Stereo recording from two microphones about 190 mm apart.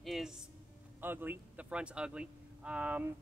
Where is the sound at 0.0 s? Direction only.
Centre (ahead or behind).